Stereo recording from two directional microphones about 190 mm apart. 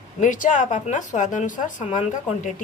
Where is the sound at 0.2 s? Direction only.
45° left (ahead or behind).